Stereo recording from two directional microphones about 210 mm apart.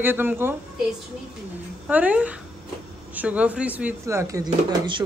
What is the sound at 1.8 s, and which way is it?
Speech, 5° right (ahead or behind).